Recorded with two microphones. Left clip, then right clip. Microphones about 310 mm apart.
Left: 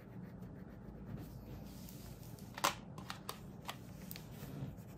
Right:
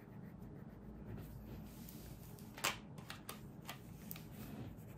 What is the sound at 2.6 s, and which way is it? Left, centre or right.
Typewriter, left.